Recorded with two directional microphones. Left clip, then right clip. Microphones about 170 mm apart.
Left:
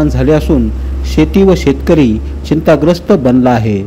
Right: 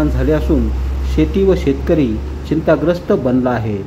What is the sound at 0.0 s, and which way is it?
Speech, 40° left (ahead or behind).